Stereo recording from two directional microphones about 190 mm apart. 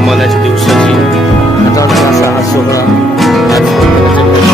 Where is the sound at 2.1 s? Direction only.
15° left (ahead or behind).